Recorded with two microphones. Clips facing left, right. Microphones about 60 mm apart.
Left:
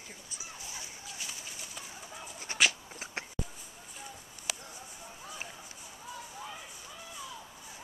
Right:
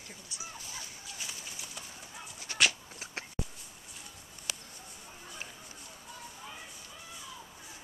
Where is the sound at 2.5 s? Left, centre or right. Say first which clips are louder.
Even; centre.